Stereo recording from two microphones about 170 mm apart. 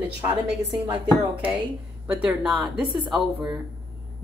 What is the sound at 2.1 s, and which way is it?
Speech, 5° right (ahead or behind).